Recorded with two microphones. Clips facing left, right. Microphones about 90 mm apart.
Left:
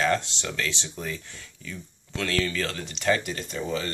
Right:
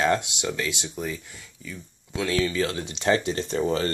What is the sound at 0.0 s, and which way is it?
Speech, 15° right (ahead or behind).